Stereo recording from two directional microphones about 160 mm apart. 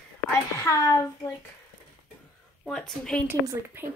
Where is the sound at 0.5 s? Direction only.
20° left (ahead or behind).